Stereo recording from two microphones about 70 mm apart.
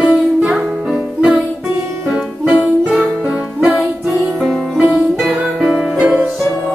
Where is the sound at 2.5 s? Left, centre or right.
Right.